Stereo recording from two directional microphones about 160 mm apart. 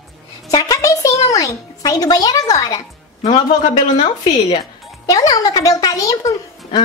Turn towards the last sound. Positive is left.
turn(degrees=20)  # may be behind; listen again after turning